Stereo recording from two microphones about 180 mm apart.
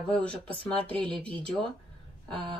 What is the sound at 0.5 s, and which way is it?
Speech, 30° right (ahead or behind).